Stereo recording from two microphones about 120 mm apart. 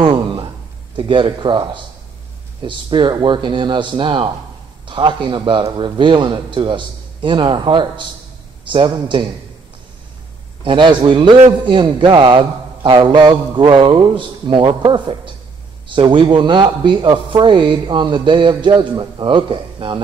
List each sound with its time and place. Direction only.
0.0 s a sound: 45° right (ahead or behind)
0.9 s speech: 45° right (ahead or behind)
10.6 s speech: 40° right (ahead or behind)